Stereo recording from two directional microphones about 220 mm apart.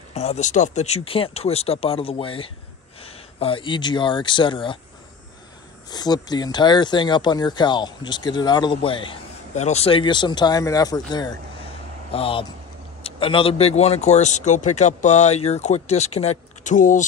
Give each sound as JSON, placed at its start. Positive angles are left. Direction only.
{"t": 0.1, "sound": "speech", "side_deg": 30}
{"t": 5.9, "sound": "speech", "side_deg": 20}